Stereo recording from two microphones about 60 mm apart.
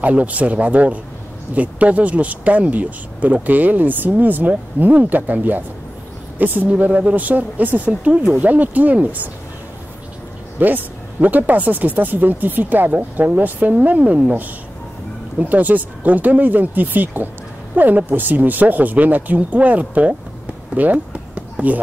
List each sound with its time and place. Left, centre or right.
0.0 s speech: right
10.6 s speech: right
20.7 s a sound: right